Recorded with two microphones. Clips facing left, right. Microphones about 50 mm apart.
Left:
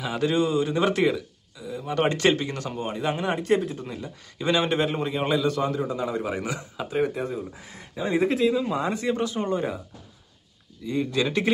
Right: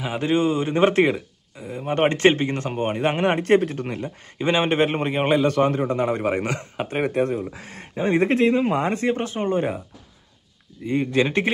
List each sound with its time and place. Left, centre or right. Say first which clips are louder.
0.0 s speech: right 2 dB; right
4.4 s a man's voice: right 3 dB; right
10.8 s speech: right 4 dB; right